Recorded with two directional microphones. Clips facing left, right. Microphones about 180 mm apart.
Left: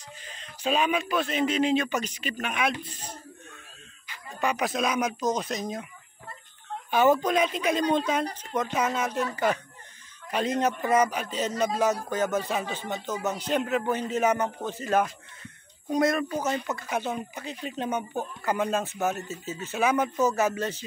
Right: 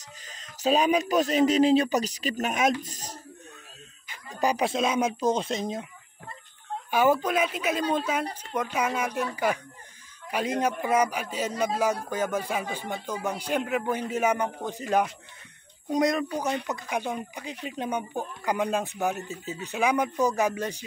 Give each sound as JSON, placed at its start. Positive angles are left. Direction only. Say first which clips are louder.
{"t": 0.2, "sound": "speech", "louder": "right 4 dB", "side_deg": -40}
{"t": 4.3, "sound": "speech", "louder": "right 2 dB", "side_deg": -35}
{"t": 6.9, "sound": "a man's voice", "louder": "left 1 dB", "side_deg": -10}